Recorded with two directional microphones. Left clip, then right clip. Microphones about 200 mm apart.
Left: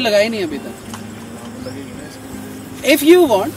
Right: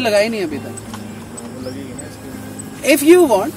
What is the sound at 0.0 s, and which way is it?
Speech, 10° right (ahead or behind).